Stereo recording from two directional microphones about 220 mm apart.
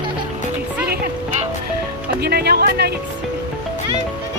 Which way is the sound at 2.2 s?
45° right (ahead or behind).